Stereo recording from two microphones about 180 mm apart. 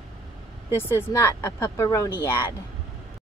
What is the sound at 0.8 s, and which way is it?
Speech, 15° left (ahead or behind).